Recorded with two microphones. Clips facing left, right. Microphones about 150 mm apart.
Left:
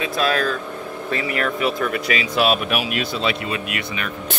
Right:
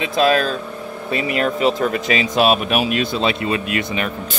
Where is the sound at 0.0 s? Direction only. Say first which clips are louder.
Right 4 dB; 20° right (ahead or behind).